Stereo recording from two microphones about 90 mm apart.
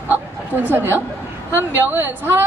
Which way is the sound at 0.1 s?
20° right (ahead or behind).